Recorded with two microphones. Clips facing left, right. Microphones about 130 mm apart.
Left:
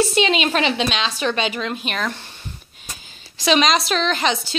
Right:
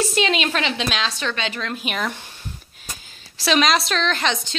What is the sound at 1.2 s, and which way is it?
A woman's voice, 15° left (ahead or behind).